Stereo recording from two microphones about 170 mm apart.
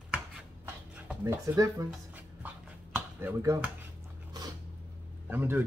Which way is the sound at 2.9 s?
15° right (ahead or behind).